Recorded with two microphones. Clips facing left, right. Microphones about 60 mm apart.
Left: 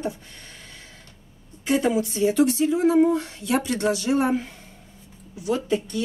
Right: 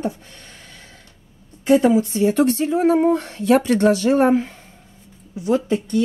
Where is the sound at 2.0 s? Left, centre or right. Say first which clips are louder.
Right 3 dB; right.